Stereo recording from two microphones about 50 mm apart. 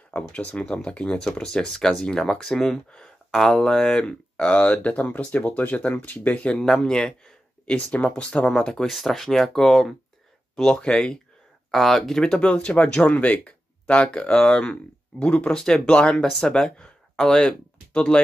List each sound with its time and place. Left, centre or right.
0.1 s speech: left
4.5 s speech: left
6.5 s speech: centre
8.8 s speech: centre
12.2 s speech: centre
14.3 s speech: centre